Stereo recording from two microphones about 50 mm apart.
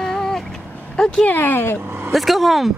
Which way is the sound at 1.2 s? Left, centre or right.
Left.